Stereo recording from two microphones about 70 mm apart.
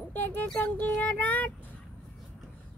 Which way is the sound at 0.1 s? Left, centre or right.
Left.